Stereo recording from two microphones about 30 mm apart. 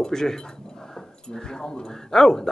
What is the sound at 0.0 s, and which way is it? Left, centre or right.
A man's voice, centre.